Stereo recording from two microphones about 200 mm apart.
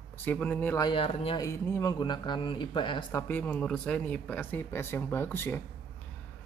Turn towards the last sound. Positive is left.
turn(degrees=10)  # may be behind; listen again after turning